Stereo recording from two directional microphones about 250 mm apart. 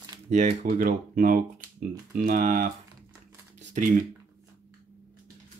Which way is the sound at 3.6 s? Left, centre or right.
Right.